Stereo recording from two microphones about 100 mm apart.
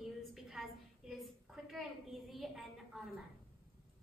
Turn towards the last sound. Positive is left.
turn(degrees=0)  # may be behind; listen again after turning